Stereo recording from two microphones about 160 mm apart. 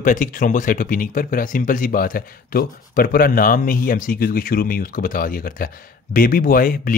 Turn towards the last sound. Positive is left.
turn(degrees=60)  # may be behind; listen again after turning